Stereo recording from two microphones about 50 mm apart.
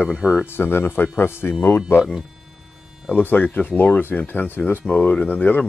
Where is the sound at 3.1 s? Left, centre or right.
Left.